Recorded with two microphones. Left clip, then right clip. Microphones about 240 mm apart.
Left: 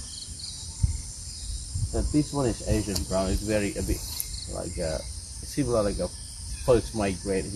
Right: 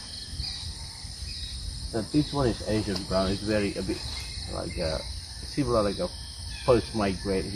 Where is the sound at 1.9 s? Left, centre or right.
Left.